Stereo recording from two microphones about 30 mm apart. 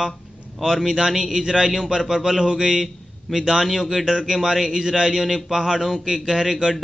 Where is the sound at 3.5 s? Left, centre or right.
Centre.